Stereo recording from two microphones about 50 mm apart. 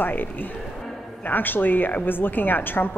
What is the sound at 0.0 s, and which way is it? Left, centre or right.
A woman's voice, left.